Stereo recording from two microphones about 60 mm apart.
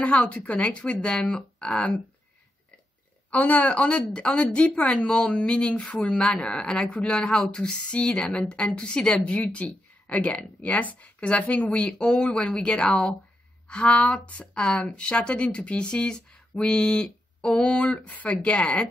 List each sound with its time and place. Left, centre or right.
0.0 s speech: left
3.3 s a woman's voice: left